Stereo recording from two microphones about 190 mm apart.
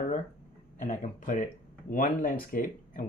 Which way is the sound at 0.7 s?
45° left (ahead or behind).